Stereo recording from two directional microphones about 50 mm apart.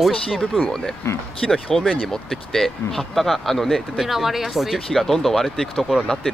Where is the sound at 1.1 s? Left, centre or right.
Left.